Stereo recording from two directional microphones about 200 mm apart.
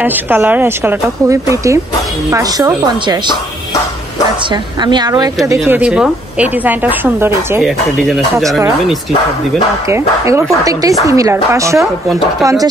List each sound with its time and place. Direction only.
0.0 s speech: 10° right (ahead or behind)
4.8 s speech: 20° right (ahead or behind)
9.8 s speech: 15° right (ahead or behind)